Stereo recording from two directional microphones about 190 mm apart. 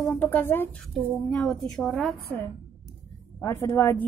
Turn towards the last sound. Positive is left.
turn(degrees=10)  # may be behind; listen again after turning